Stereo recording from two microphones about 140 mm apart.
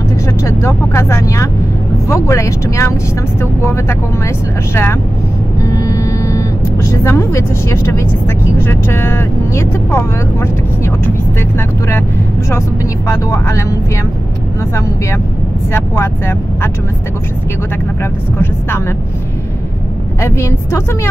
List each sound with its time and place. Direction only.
0.4 s a woman's voice: 20° left (ahead or behind)
5.6 s vehicle: 25° left (ahead or behind)
8.6 s speech: 15° left (ahead or behind)
13.1 s a woman's voice: 20° left (ahead or behind)
15.7 s speech: 15° left (ahead or behind)
20.2 s a woman's voice: 20° left (ahead or behind)